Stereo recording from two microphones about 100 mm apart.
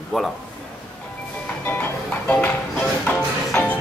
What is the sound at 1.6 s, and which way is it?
Music, 20° left (ahead or behind).